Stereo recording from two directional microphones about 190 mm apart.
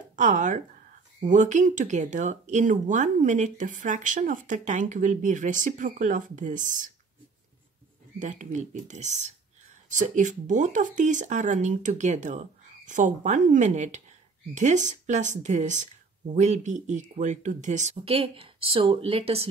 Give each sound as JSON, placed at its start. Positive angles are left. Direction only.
{"t": 0.1, "sound": "speech", "side_deg": -40}
{"t": 8.2, "sound": "speech", "side_deg": -40}